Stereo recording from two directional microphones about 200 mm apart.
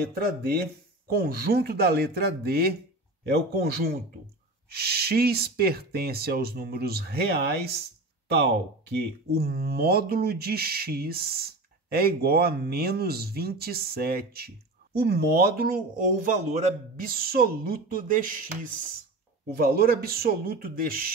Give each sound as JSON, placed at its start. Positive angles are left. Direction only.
{"t": 0.1, "sound": "speech", "side_deg": -50}
{"t": 19.5, "sound": "speech", "side_deg": -50}